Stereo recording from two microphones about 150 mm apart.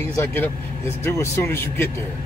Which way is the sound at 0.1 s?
15° left (ahead or behind).